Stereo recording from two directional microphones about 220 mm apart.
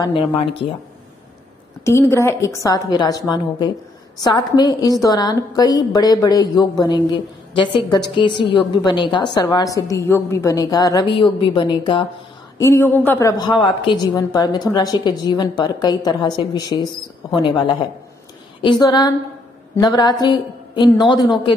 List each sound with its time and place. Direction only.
0.0 s a woman's voice: 20° left (ahead or behind)
1.9 s a woman's voice: 10° left (ahead or behind)
12.5 s a woman's voice: 10° left (ahead or behind)